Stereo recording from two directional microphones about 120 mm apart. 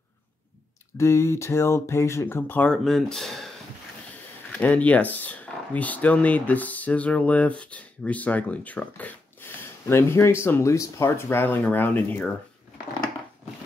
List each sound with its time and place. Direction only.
0.9 s speech: 25° left (ahead or behind)
2.8 s speech: centre (ahead or behind)
4.5 s speech: 10° left (ahead or behind)